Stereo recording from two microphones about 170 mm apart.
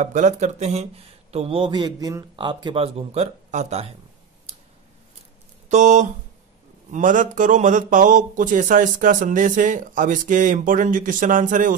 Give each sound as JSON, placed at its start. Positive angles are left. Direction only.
{"t": 0.0, "sound": "a man's voice", "side_deg": -45}
{"t": 5.7, "sound": "speech", "side_deg": -45}